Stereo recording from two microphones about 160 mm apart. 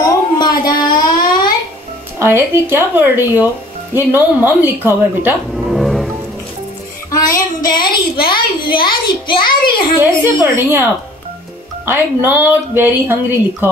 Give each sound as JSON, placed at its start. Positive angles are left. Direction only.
{"t": 0.0, "sound": "a sound", "side_deg": 25}
{"t": 0.8, "sound": "child singing", "side_deg": 25}
{"t": 2.1, "sound": "speech", "side_deg": -15}
{"t": 5.7, "sound": "music", "side_deg": 0}
{"t": 7.1, "sound": "music", "side_deg": 20}
{"t": 8.3, "sound": "a child's voice", "side_deg": 30}
{"t": 9.9, "sound": "speech", "side_deg": -15}